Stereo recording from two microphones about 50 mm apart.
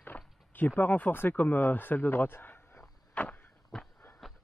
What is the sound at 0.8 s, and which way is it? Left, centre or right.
Speech, left.